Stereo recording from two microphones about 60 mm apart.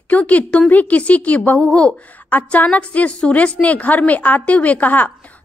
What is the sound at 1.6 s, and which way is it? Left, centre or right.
Speech, centre.